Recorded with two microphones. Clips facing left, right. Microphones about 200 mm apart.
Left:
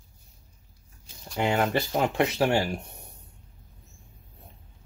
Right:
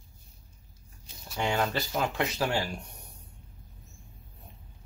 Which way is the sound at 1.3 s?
20° left (ahead or behind).